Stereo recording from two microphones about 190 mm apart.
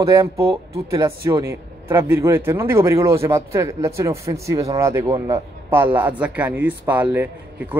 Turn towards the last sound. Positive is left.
turn(degrees=-10)  # may be behind; listen again after turning